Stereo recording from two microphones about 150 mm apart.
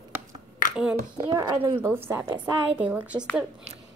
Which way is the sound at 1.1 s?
30° right (ahead or behind).